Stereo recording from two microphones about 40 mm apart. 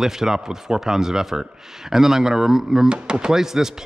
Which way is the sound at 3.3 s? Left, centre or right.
Centre.